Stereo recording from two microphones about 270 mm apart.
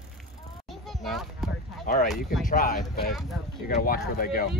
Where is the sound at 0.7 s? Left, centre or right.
Centre.